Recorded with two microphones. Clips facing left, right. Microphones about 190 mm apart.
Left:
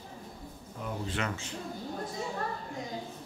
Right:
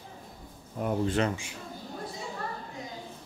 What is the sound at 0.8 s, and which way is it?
Speech, 50° right (ahead or behind).